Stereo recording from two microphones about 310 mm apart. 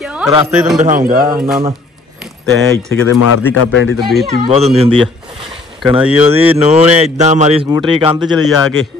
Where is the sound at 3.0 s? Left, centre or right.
Left.